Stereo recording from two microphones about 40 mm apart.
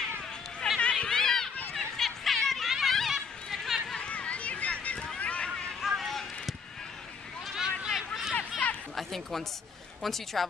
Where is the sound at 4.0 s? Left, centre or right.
Left.